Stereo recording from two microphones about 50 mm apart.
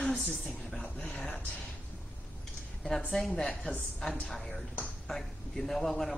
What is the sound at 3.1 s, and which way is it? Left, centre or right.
Speech, centre.